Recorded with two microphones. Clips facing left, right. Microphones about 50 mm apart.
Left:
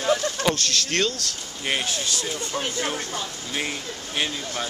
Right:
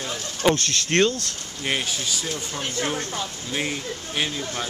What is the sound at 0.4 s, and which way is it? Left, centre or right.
Speech, right.